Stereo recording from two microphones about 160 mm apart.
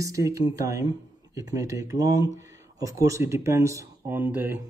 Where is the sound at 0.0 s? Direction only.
20° right (ahead or behind).